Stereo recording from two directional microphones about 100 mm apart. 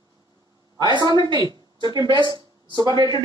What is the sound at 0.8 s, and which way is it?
Speech, 50° right (ahead or behind).